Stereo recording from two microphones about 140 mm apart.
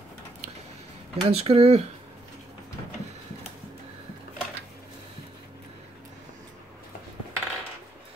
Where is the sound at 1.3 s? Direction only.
45° right (ahead or behind).